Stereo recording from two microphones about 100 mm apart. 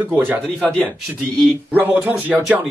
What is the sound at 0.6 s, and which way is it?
Speech, 15° left (ahead or behind).